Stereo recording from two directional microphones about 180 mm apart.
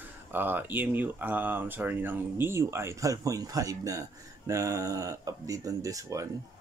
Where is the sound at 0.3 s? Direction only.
10° right (ahead or behind).